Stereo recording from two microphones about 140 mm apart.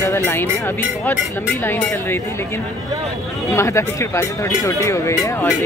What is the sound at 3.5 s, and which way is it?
Speech, 20° left (ahead or behind).